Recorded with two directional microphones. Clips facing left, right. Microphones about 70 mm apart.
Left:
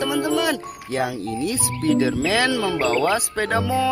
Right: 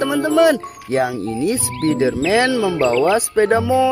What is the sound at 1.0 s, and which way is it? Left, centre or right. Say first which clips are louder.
Speech: right 5 dB; right.